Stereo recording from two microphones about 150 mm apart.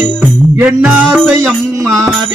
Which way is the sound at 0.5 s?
15° right (ahead or behind).